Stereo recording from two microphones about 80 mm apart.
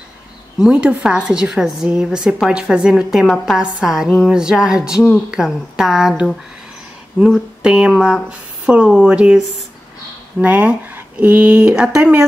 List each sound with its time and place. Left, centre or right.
0.7 s a woman's voice: centre
10.4 s a woman's voice: centre